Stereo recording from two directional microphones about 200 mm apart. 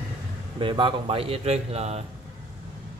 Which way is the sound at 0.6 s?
25° right (ahead or behind).